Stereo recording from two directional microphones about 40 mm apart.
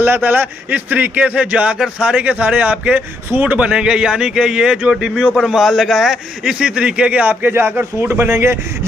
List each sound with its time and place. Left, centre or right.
0.0 s a man's voice: right
1.2 s a man's voice: right
3.3 s speech: right
3.5 s speech: right
5.5 s a man's voice: centre
6.6 s speech: right
7.2 s a man's voice: right